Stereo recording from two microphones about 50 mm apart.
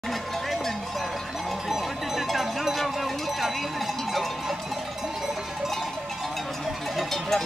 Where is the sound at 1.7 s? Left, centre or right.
Centre.